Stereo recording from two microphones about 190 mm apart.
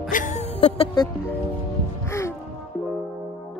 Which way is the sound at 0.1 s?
40° left (ahead or behind).